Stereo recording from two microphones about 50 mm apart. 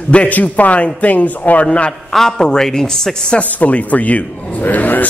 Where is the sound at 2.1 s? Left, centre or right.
Centre.